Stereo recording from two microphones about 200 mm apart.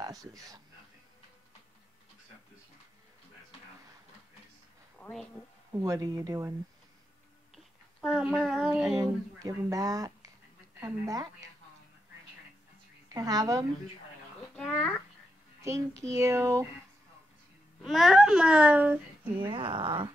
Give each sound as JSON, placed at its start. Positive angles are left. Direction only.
{"t": 0.0, "sound": "speech", "side_deg": -15}
{"t": 5.0, "sound": "a sound", "side_deg": 5}
{"t": 5.7, "sound": "speech", "side_deg": -15}
{"t": 7.5, "sound": "a sound", "side_deg": 0}
{"t": 8.7, "sound": "speech", "side_deg": -5}
{"t": 9.0, "sound": "speech", "side_deg": -15}
{"t": 13.1, "sound": "speech", "side_deg": -20}
{"t": 14.5, "sound": "a child's voice", "side_deg": 5}
{"t": 16.0, "sound": "speech", "side_deg": -15}
{"t": 17.8, "sound": "speech", "side_deg": 0}
{"t": 19.4, "sound": "speech", "side_deg": -25}